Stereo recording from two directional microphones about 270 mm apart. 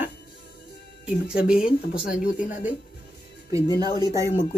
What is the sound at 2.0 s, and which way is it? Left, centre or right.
Speech, left.